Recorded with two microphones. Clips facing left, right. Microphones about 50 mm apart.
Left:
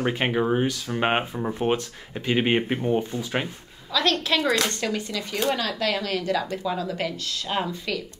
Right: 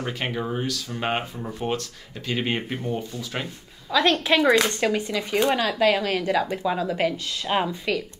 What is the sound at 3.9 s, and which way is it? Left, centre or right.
Speech, right.